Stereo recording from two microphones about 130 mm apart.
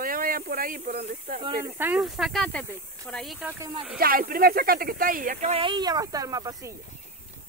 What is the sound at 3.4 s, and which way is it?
Speech, 20° right (ahead or behind).